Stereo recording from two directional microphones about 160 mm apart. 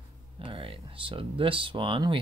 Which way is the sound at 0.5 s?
35° right (ahead or behind).